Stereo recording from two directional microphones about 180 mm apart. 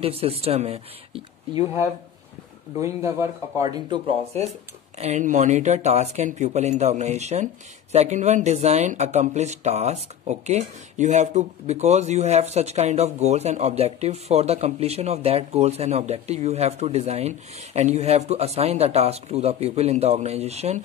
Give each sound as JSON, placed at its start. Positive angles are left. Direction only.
{"t": 0.0, "sound": "speech", "side_deg": -30}
{"t": 2.8, "sound": "speech", "side_deg": -15}